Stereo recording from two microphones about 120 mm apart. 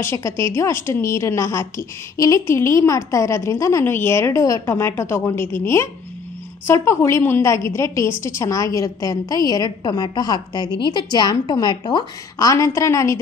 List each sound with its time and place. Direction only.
0.0 s a woman's voice: 25° left (ahead or behind); by 12.1 s 40° left (ahead or behind)
12.4 s a woman's voice: 25° left (ahead or behind)